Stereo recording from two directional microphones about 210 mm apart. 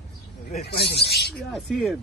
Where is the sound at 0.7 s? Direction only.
50° left (ahead or behind).